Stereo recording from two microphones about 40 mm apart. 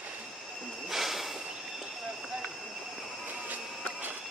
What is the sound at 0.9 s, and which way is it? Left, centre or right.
Train, centre.